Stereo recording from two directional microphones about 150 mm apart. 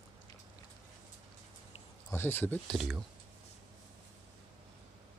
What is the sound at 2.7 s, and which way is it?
Speech, centre (ahead or behind).